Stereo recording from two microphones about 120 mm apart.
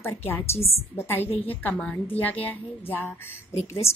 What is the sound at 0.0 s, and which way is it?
A woman's voice, 20° left (ahead or behind).